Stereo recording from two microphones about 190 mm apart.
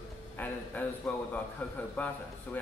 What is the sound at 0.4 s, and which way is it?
A man's voice, 10° left (ahead or behind).